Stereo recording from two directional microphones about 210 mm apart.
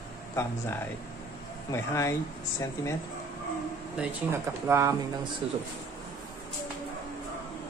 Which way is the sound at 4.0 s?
10° right (ahead or behind).